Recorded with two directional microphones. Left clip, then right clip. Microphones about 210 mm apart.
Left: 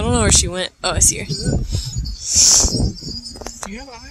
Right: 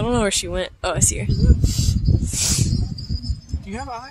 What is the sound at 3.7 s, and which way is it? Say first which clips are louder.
Speech: right 4 dB; 25° right (ahead or behind).